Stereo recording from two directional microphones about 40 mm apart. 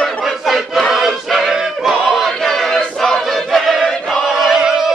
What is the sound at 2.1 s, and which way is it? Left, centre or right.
Choir, centre.